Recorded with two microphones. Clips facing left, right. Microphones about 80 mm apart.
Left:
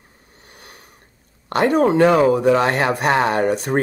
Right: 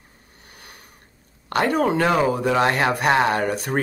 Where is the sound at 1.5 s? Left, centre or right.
Left.